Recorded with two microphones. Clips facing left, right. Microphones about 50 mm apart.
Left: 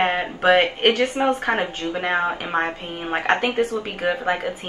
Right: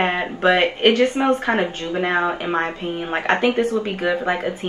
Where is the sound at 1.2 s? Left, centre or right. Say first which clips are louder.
Right 1 dB; centre.